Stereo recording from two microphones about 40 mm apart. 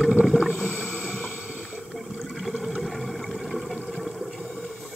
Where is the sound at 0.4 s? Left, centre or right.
Right.